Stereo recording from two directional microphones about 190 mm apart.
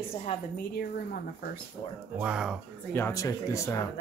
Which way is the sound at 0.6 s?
55° left (ahead or behind).